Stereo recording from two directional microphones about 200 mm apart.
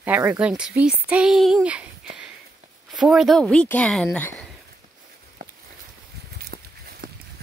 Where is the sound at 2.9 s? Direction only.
Centre (ahead or behind).